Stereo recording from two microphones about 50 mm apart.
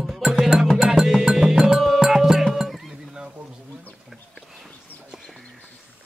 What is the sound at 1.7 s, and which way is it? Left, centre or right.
Music, centre.